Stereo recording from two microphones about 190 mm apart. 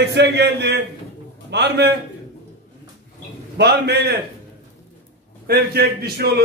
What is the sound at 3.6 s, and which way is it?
Speech, 60° right (ahead or behind).